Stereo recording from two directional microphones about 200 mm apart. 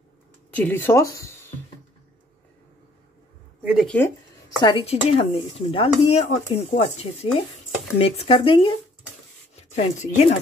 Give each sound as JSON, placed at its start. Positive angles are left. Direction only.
{"t": 0.5, "sound": "speech", "side_deg": 10}
{"t": 3.6, "sound": "speech", "side_deg": -5}
{"t": 4.6, "sound": "speech", "side_deg": 25}